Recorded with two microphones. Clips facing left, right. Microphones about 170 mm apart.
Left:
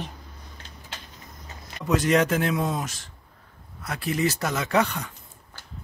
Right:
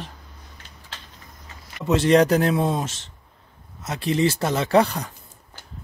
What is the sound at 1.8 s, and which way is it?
A man's voice, 25° right (ahead or behind).